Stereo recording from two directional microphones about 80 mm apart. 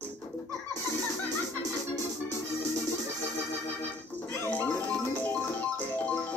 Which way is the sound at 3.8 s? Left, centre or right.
Left.